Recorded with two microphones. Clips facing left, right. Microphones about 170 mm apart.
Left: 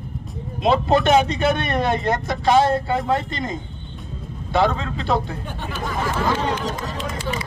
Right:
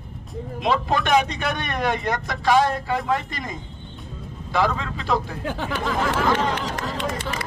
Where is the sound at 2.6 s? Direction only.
30° left (ahead or behind).